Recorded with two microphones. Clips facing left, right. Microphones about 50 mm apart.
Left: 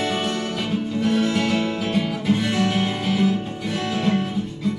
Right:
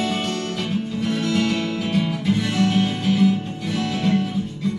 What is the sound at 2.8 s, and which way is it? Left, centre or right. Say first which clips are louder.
Music: right 2 dB; centre.